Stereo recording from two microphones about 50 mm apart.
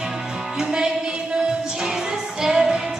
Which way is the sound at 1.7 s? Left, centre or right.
Centre.